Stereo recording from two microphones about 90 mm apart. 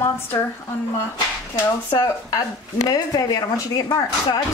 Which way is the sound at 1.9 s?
40° left (ahead or behind).